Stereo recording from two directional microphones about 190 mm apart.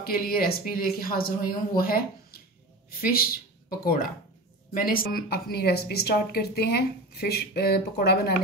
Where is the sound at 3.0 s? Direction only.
50° left (ahead or behind).